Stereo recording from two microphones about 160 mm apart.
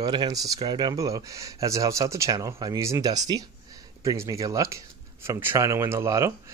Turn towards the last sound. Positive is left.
turn(degrees=-15)  # may be behind; listen again after turning